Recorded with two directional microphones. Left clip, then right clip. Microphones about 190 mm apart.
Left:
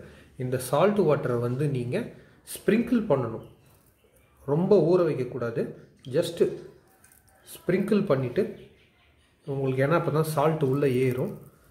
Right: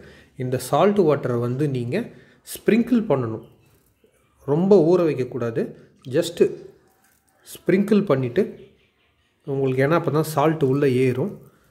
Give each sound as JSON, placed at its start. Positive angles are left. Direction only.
{"t": 0.0, "sound": "speech", "side_deg": -45}
{"t": 4.5, "sound": "a man's voice", "side_deg": -45}
{"t": 9.5, "sound": "a man's voice", "side_deg": -45}